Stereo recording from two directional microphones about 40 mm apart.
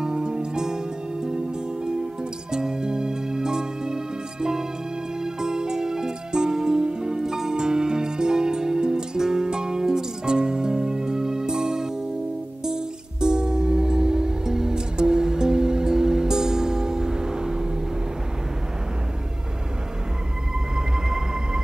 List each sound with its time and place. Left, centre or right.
0.0 s music: centre
2.5 s music: centre
20.7 s a sound: centre